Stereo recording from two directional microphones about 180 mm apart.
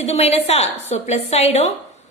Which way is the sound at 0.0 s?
35° left (ahead or behind).